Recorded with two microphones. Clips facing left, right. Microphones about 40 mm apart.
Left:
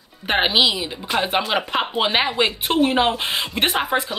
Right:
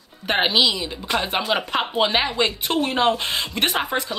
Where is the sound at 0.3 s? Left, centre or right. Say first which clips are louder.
Left 1 dB; centre.